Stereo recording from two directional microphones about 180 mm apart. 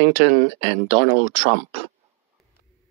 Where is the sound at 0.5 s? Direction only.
35° right (ahead or behind).